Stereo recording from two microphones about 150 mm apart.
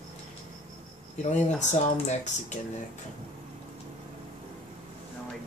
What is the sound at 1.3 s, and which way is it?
Speech, 50° left (ahead or behind).